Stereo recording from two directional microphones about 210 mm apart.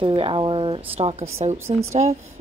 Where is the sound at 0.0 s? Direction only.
25° right (ahead or behind).